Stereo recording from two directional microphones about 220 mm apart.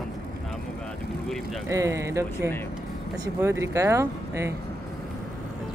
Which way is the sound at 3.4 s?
15° right (ahead or behind).